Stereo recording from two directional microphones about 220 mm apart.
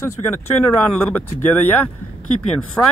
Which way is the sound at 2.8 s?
5° left (ahead or behind).